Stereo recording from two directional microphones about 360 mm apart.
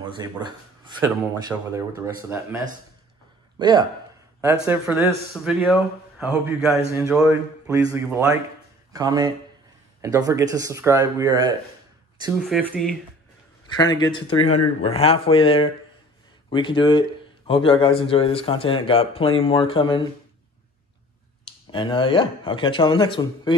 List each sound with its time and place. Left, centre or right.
0.0 s speech: centre
1.5 s a man's voice: centre
12.2 s a man's voice: centre
14.3 s speech: left
14.8 s speech: centre
21.5 s speech: centre